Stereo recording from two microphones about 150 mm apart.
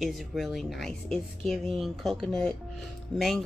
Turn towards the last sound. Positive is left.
turn(degrees=0)  # may be behind; listen again after turning